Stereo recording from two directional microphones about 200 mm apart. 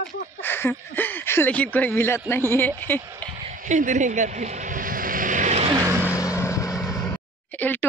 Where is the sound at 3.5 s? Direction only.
40° right (ahead or behind).